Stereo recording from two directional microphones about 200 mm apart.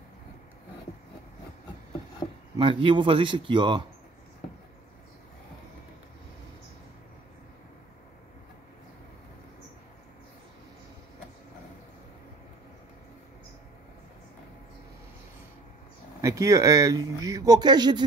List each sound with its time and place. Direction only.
2.5 s speech: 25° right (ahead or behind)
16.2 s speech: 15° right (ahead or behind)